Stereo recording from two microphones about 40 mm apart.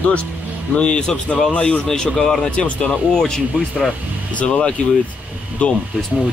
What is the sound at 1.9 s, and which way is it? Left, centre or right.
Speech, centre.